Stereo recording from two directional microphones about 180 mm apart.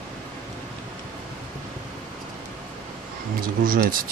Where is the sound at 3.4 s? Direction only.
50° right (ahead or behind).